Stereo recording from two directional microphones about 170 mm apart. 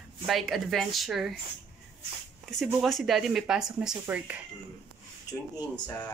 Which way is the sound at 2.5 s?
Centre (ahead or behind).